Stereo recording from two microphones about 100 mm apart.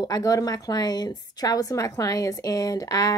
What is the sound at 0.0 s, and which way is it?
Speech, 35° left (ahead or behind).